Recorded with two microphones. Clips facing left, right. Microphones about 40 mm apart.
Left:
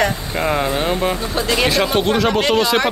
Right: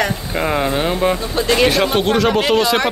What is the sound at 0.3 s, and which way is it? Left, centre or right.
Speech, centre.